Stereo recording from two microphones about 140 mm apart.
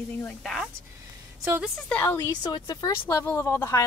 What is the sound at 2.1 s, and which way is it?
Speech, 30° left (ahead or behind).